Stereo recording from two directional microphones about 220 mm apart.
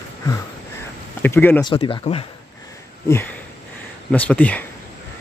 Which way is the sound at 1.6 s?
25° left (ahead or behind).